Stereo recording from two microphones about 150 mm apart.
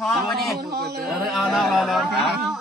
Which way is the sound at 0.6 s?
90° right.